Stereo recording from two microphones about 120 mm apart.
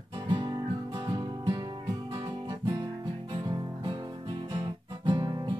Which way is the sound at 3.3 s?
40° right (ahead or behind).